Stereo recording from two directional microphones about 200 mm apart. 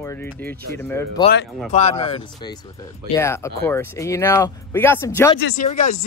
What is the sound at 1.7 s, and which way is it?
Speech, 35° left (ahead or behind).